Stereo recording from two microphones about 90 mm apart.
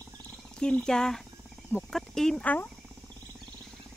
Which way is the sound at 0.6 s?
10° left (ahead or behind).